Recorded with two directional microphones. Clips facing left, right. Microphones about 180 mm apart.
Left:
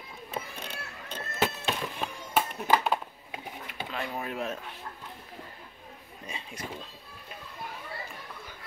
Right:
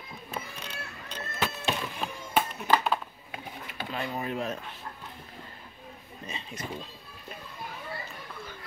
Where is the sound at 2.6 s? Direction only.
15° left (ahead or behind).